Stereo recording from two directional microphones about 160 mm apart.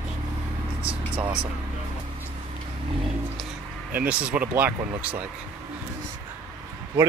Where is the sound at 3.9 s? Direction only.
10° right (ahead or behind).